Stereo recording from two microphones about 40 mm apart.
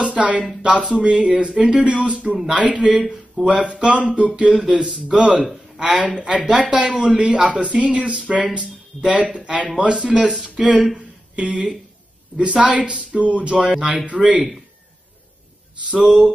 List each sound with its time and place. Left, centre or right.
0.2 s speech: right
9.8 s speech: right
11.0 s a sound: right
12.6 s speech: right
15.8 s speech: right